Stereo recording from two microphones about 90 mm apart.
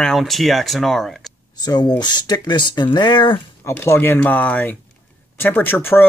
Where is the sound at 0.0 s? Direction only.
Centre (ahead or behind).